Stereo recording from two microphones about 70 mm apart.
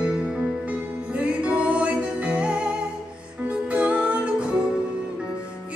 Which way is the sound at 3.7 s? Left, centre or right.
Centre.